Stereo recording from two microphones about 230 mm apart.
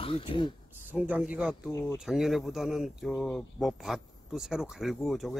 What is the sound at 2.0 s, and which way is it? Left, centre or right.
Speech, centre.